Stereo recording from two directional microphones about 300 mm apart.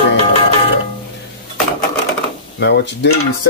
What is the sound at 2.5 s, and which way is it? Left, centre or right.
Speech, left.